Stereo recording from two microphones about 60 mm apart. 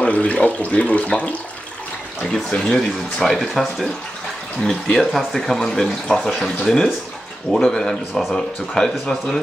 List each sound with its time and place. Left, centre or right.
0.0 s speech: left
2.5 s speech: centre
4.6 s speech: centre